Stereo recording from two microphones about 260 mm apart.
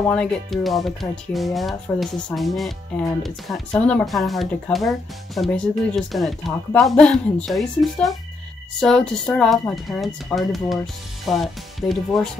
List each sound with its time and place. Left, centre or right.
0.1 s speech: centre